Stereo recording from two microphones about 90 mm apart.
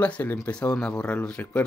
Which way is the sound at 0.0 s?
20° left (ahead or behind).